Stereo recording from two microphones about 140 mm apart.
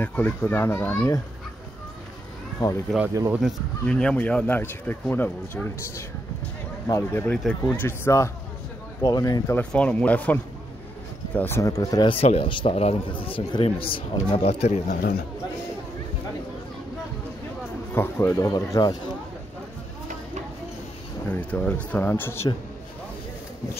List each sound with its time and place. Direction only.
0.0 s speech: 10° left (ahead or behind)
2.9 s speech: centre (ahead or behind); by 9.6 s 25° left (ahead or behind)
9.6 s speech: 10° left (ahead or behind); by 12.1 s 25° left (ahead or behind)
12.1 s a man's voice: 45° left (ahead or behind)
17.9 s speech: 15° left (ahead or behind)
21.3 s speech: 10° left (ahead or behind)